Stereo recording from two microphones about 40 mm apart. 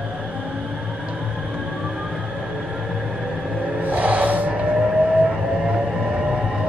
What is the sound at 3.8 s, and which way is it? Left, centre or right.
Vehicle, right.